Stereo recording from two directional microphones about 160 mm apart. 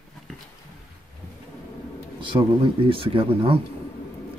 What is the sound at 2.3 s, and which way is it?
Speech, 25° right (ahead or behind).